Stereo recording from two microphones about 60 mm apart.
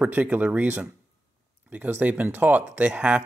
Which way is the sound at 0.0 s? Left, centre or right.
Right.